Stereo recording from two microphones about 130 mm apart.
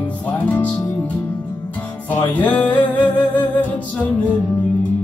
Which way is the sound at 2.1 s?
10° left (ahead or behind).